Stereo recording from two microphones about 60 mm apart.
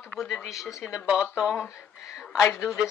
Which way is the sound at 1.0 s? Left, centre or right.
Centre.